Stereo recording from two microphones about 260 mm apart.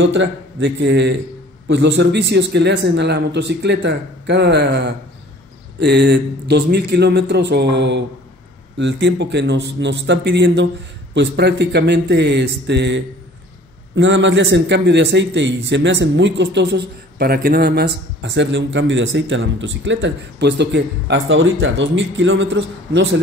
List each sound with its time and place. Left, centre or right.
0.0 s a man's voice: right